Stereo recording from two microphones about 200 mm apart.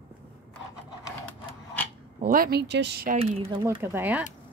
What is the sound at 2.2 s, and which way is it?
Speech, 45° right (ahead or behind).